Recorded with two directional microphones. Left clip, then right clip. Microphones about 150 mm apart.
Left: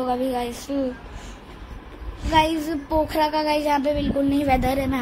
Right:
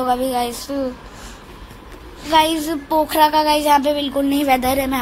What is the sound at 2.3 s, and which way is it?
A woman's voice, 5° right (ahead or behind).